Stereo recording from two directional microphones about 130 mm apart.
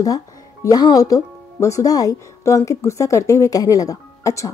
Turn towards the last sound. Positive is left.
turn(degrees=25)  # may be behind; listen again after turning